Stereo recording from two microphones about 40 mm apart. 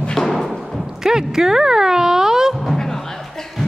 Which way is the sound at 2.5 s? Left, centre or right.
Centre.